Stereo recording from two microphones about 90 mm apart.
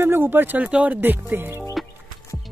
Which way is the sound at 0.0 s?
25° right (ahead or behind).